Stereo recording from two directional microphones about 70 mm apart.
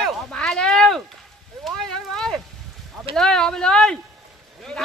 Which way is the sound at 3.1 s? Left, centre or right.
Centre.